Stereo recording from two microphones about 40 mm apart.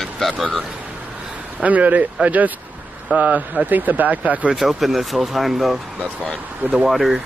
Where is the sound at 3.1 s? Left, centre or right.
Right.